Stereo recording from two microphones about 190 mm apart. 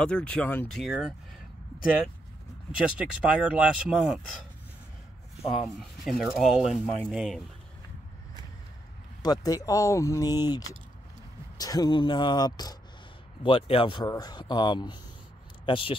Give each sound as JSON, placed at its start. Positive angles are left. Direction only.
{"t": 0.0, "sound": "speech", "side_deg": 5}
{"t": 2.8, "sound": "speech", "side_deg": -5}
{"t": 5.7, "sound": "speech", "side_deg": 0}
{"t": 9.2, "sound": "speech", "side_deg": 20}